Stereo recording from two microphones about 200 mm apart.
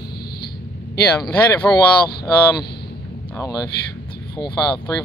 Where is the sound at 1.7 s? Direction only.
5° left (ahead or behind).